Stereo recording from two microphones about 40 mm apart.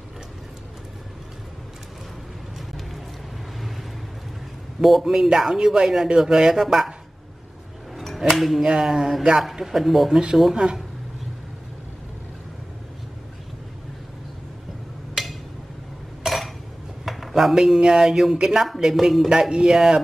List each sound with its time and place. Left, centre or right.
3.5 s vehicle: centre
4.8 s speech: centre
7.9 s music: centre
8.6 s speech: centre
10.5 s speech: right
15.2 s a sound: centre
17.6 s speech: centre